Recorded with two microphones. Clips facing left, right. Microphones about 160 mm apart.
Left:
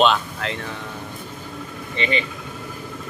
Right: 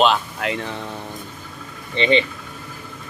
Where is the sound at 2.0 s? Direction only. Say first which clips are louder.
Right 6 dB; 30° right (ahead or behind).